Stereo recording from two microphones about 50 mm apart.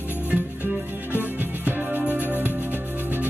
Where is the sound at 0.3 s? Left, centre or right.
Right.